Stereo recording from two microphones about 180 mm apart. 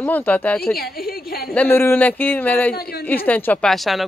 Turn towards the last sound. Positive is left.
turn(degrees=0)  # may be behind; listen again after turning